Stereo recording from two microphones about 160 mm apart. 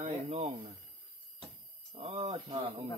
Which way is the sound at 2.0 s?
35° right (ahead or behind).